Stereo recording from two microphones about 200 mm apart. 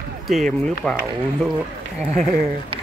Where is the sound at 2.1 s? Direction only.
35° right (ahead or behind).